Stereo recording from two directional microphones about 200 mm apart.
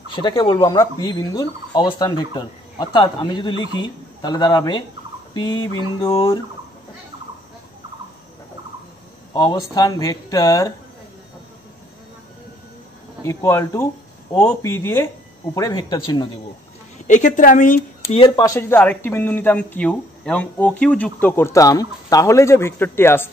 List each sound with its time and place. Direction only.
0.1 s speech: 25° left (ahead or behind)
9.3 s speech: 20° left (ahead or behind)
13.2 s speech: 15° left (ahead or behind)
17.1 s speech: 40° left (ahead or behind)
18.2 s speech: 20° left (ahead or behind)